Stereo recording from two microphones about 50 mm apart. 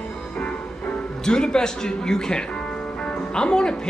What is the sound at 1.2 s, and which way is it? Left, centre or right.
Speech, centre.